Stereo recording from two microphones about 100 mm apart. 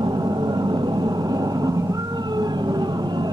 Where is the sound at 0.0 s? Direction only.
45° right (ahead or behind).